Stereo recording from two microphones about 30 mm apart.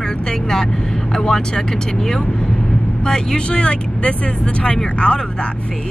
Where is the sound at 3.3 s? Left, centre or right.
Left.